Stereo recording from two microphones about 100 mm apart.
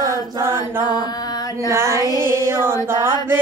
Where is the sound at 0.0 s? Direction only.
30° right (ahead or behind).